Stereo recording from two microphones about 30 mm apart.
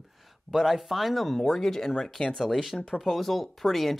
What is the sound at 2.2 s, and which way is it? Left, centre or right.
Speech, left.